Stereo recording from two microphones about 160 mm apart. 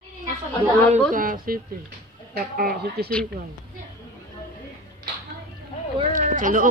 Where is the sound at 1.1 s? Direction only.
60° right (ahead or behind).